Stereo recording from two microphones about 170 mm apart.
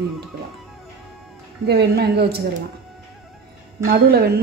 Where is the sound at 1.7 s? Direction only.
75° right (ahead or behind).